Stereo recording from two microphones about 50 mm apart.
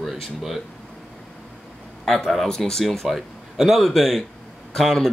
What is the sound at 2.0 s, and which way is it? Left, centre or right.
A man's voice, centre.